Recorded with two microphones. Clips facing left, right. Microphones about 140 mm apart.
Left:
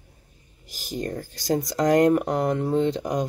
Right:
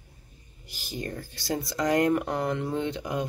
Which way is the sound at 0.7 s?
40° left (ahead or behind).